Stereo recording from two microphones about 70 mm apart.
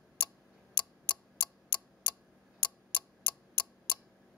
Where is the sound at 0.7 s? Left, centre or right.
Left.